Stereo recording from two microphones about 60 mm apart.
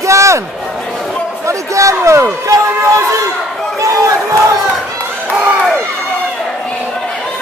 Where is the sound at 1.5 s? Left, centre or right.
Right.